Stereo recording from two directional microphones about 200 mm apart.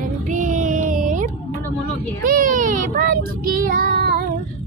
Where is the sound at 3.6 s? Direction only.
45° right (ahead or behind).